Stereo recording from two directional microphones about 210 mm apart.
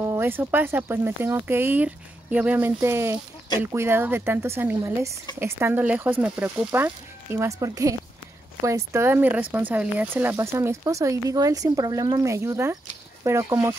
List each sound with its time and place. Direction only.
0.0 s speech: 10° right (ahead or behind)